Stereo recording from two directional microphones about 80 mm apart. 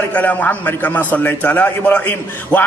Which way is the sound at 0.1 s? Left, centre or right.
Left.